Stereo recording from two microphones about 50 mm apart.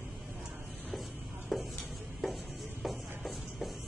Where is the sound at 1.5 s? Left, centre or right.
Centre.